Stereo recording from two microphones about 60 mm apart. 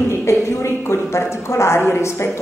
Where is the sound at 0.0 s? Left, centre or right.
Left.